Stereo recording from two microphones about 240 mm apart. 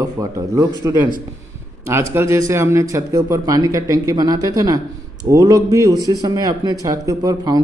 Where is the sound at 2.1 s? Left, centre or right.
Centre.